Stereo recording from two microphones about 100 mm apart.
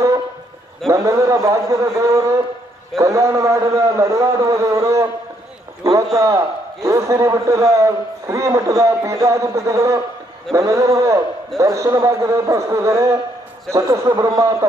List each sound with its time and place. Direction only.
0.8 s a man's voice: 30° right (ahead or behind)
6.1 s a man's voice: 30° right (ahead or behind)